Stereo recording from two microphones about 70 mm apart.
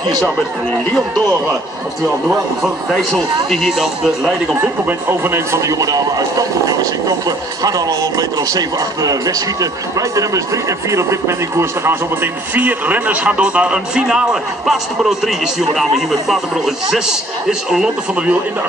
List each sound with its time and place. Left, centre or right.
2.9 s speech: centre
4.6 s speech: right
12.5 s speech: right